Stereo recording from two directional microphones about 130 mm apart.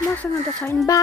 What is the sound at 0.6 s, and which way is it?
Speech, 25° left (ahead or behind).